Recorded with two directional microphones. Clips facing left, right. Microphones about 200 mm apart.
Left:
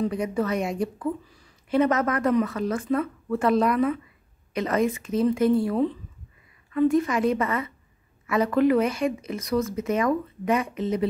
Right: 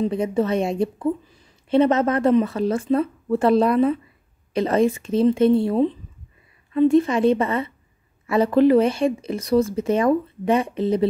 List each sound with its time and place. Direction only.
0.0 s speech: 25° right (ahead or behind)